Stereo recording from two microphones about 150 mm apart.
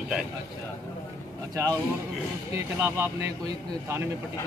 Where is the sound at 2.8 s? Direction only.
15° right (ahead or behind).